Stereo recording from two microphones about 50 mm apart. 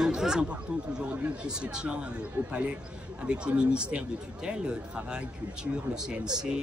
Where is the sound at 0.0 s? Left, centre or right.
Centre.